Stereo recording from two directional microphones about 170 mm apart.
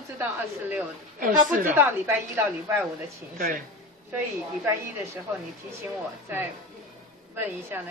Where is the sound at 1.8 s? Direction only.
15° right (ahead or behind).